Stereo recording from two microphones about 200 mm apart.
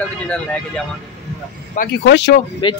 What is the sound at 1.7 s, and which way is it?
Speech, 45° left (ahead or behind).